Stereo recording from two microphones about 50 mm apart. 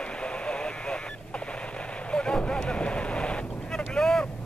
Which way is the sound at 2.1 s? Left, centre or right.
Centre.